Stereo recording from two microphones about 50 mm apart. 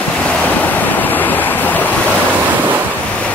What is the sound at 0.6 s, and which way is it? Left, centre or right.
Waves, left.